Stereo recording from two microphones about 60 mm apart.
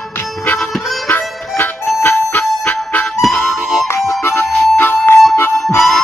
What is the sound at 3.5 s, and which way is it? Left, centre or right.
Harmonica, centre.